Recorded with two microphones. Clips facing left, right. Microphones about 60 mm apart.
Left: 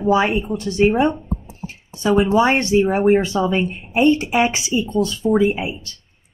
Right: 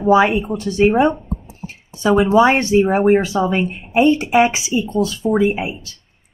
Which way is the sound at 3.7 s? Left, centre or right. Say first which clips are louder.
Right 4 dB; right.